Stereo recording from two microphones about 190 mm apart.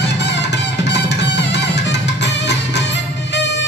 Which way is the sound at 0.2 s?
65° left (ahead or behind).